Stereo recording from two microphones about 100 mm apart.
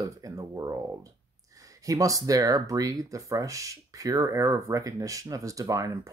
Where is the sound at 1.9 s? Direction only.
35° right (ahead or behind).